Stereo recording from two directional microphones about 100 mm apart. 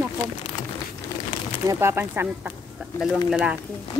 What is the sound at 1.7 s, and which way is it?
Speech, 25° right (ahead or behind).